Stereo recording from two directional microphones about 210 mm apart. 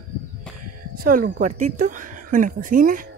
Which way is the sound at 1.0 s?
45° right (ahead or behind).